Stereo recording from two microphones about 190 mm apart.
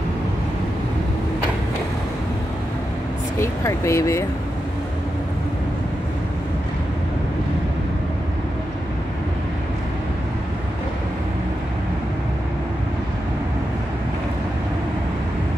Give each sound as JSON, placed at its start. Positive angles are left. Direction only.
{"t": 3.3, "sound": "speech", "side_deg": 15}